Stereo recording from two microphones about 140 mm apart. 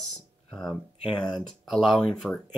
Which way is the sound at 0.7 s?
30° left (ahead or behind).